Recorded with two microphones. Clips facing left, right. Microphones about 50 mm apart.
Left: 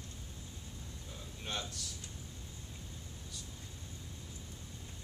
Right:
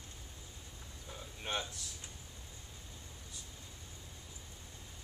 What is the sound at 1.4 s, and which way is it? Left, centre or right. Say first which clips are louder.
Speech: right 2 dB; right.